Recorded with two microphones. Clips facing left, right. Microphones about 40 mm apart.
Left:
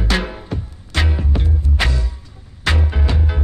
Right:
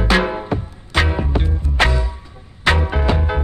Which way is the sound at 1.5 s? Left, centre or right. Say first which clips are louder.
Right 4 dB; right.